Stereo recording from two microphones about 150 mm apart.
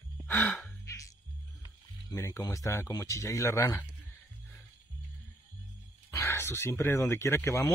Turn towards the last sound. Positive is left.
turn(degrees=20)  # may be behind; listen again after turning